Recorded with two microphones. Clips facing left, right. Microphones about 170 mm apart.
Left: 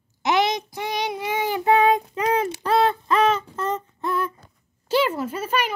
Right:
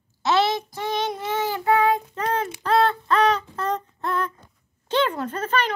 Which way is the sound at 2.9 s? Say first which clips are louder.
Even; 10° left (ahead or behind).